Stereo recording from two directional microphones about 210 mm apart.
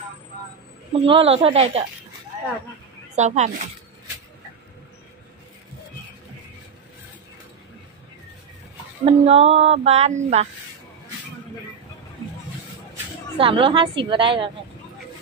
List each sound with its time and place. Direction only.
1.0 s a woman's voice: 25° right (ahead or behind)
3.2 s speech: 30° right (ahead or behind)
9.0 s speech: 30° right (ahead or behind)
13.4 s a woman's voice: 25° right (ahead or behind)